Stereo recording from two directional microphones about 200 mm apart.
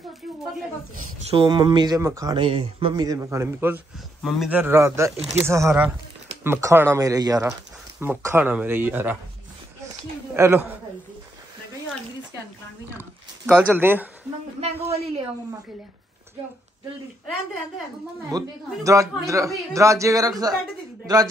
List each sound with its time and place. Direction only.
1.3 s a man's voice: 25° right (ahead or behind)
13.5 s a man's voice: 10° right (ahead or behind)
14.6 s a man's voice: 30° right (ahead or behind)
18.3 s a man's voice: 20° right (ahead or behind)